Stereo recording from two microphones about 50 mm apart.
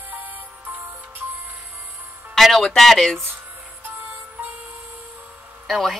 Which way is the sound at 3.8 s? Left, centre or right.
Right.